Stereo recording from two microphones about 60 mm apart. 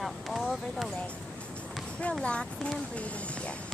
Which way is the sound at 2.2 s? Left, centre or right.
Centre.